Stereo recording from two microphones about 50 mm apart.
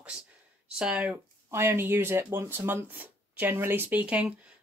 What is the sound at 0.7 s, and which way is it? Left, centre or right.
Speech, right.